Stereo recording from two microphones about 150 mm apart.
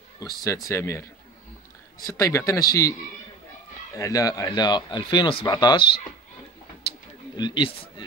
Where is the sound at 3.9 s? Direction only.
20° left (ahead or behind).